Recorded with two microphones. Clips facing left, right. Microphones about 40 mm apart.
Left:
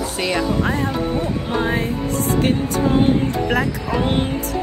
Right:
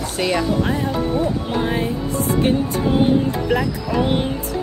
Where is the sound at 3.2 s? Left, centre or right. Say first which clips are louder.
Even; left.